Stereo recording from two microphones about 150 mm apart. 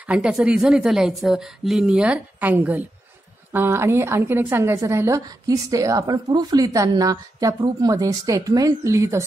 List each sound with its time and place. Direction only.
0.0 s a woman's voice: 5° right (ahead or behind)